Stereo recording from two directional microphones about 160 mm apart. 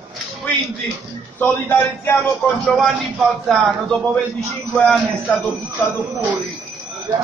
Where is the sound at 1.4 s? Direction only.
10° left (ahead or behind).